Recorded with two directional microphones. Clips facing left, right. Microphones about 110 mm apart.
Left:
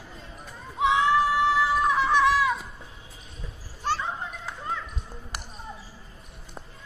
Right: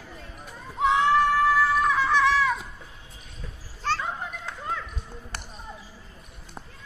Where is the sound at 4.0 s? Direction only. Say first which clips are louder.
Even; centre (ahead or behind).